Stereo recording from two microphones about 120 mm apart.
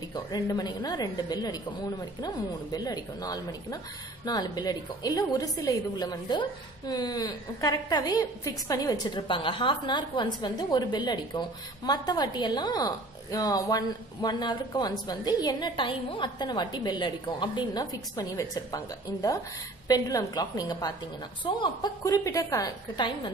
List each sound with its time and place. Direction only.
0.1 s a woman's voice: 35° left (ahead or behind)
19.9 s a woman's voice: 30° left (ahead or behind)
22.9 s a woman's voice: 40° left (ahead or behind)